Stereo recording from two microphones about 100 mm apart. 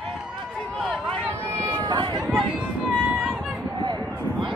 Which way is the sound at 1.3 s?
25° right (ahead or behind).